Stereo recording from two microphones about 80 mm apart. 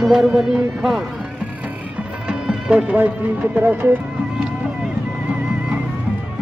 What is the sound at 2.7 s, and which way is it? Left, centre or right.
Speech, right.